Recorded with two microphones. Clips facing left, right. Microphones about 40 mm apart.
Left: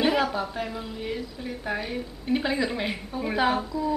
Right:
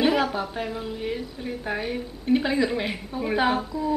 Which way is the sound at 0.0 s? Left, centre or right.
Centre.